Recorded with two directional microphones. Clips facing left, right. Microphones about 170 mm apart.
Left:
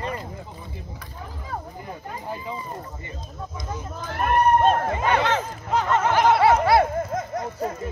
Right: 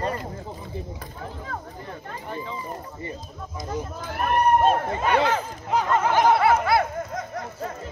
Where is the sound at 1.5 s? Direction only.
10° left (ahead or behind).